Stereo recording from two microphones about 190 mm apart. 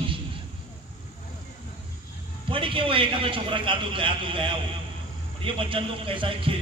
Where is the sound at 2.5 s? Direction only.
25° right (ahead or behind).